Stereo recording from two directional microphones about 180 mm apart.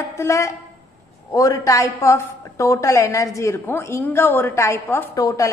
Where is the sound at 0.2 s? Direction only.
15° left (ahead or behind).